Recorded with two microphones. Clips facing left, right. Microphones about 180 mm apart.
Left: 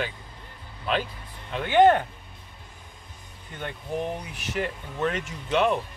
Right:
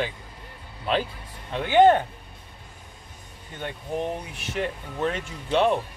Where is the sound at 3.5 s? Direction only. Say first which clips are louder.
Right 1 dB; 25° right (ahead or behind).